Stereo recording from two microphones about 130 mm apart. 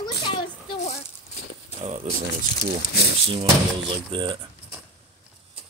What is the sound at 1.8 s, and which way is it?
Speech, 55° right (ahead or behind).